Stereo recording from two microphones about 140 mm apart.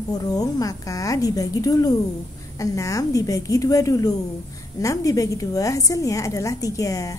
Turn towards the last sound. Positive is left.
turn(degrees=25)  # may be behind; listen again after turning